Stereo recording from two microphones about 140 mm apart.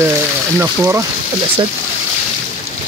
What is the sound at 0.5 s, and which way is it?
Speech, 15° right (ahead or behind).